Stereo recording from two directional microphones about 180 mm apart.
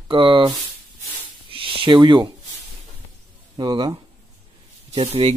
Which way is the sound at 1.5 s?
30° right (ahead or behind).